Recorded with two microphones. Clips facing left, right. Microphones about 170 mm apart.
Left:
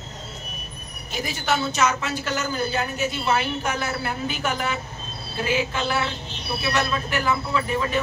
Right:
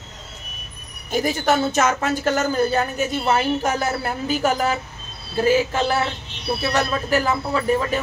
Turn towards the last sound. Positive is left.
turn(degrees=-40)  # may be behind; listen again after turning